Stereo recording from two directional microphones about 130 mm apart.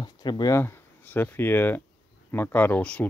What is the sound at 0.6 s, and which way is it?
Speech, 15° left (ahead or behind).